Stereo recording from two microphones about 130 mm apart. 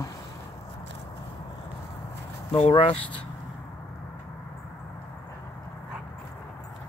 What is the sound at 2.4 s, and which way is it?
Speech, 50° left (ahead or behind).